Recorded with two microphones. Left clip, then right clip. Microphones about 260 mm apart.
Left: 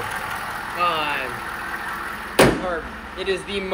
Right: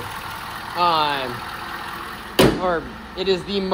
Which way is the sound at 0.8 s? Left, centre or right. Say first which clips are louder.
Right 4 dB; centre.